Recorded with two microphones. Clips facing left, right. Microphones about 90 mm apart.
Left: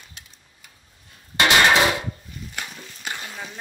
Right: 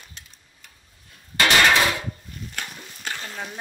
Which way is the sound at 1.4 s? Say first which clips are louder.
Left 1 dB; 20° left (ahead or behind).